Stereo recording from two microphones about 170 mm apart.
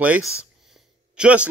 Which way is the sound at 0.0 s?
10° right (ahead or behind).